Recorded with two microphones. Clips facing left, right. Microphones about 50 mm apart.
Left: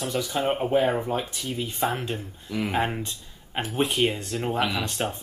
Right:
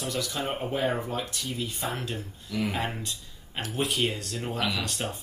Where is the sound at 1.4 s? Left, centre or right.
Left.